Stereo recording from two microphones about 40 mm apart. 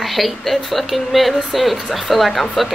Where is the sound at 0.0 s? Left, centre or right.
Centre.